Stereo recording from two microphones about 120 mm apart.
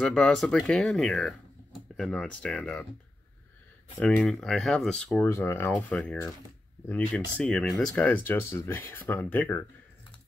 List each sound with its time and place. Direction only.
0.0 s speech: 5° left (ahead or behind)
4.0 s speech: 10° left (ahead or behind)